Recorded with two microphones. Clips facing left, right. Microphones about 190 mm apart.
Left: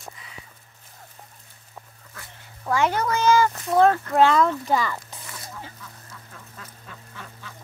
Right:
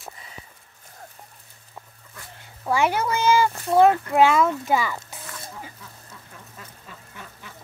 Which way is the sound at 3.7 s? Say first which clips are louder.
Right 1 dB; 10° right (ahead or behind).